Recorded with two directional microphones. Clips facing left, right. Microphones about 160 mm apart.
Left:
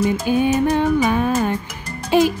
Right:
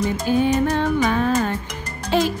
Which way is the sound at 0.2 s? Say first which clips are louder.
Left 1 dB; 10° left (ahead or behind).